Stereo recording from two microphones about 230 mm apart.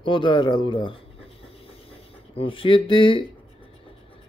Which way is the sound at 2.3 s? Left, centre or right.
Left.